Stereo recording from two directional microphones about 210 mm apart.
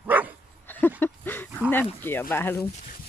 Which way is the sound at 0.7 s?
10° left (ahead or behind).